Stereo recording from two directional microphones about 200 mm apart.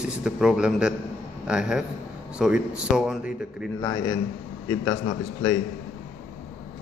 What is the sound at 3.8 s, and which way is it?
Speech, 15° left (ahead or behind).